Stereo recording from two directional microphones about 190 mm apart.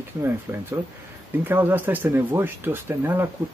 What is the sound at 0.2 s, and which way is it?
Speech, 15° right (ahead or behind).